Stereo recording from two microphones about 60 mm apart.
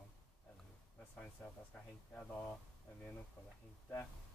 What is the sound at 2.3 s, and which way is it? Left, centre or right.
Speech, left.